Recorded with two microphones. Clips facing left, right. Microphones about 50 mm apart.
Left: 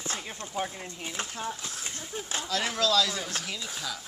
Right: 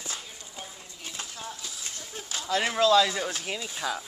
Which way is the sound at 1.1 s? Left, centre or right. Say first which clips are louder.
Left 4 dB; left.